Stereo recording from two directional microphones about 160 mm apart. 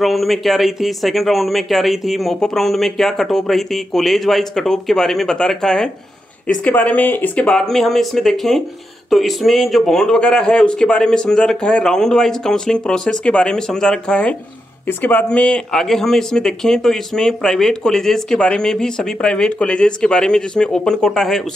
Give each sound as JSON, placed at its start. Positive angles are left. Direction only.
{"t": 0.0, "sound": "speech", "side_deg": 0}